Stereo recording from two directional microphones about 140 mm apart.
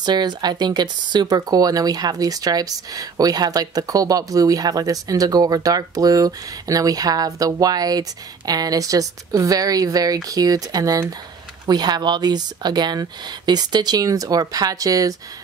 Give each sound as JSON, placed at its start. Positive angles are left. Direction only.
{"t": 0.0, "sound": "speech", "side_deg": -30}